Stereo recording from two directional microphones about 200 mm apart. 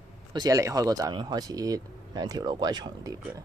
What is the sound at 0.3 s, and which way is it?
Speech, 20° right (ahead or behind).